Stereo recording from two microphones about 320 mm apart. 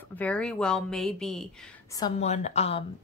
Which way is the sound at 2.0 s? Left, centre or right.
Centre.